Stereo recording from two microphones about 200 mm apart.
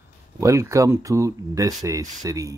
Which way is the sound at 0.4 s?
15° right (ahead or behind).